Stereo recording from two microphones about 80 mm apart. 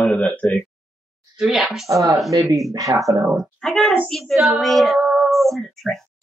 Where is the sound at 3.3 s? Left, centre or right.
Centre.